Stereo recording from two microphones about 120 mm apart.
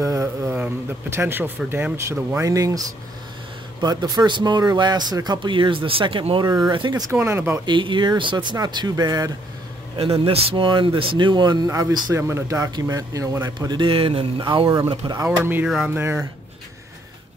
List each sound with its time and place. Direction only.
0.0 s a sound: 30° right (ahead or behind)
1.1 s speech: 15° right (ahead or behind)
2.3 s speech: 30° right (ahead or behind)
3.8 s speech: 30° right (ahead or behind)
6.3 s speech: 35° right (ahead or behind)
7.1 s speech: 20° right (ahead or behind)
7.6 s speech: 40° right (ahead or behind)
9.9 s speech: 50° right (ahead or behind); by 13.5 s 25° right (ahead or behind)
13.6 s speech: 40° right (ahead or behind)
15.2 s speech: 10° right (ahead or behind)